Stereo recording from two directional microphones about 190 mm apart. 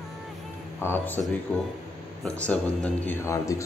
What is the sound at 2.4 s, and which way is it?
Speech, 5° left (ahead or behind).